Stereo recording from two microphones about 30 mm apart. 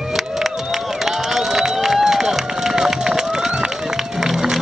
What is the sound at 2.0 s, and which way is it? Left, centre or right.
Run, centre.